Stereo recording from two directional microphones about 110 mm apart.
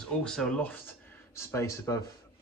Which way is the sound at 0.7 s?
25° left (ahead or behind).